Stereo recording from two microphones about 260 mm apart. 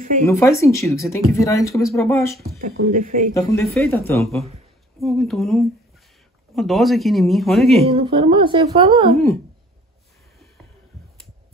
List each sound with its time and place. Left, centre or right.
0.2 s speech: centre
2.7 s speech: right
3.3 s speech: centre
7.8 s a woman's voice: right